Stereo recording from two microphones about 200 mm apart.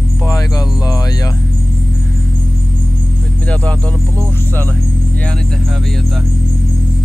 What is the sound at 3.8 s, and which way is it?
Music, 15° right (ahead or behind).